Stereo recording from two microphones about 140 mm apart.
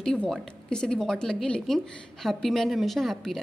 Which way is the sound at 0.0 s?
5° left (ahead or behind).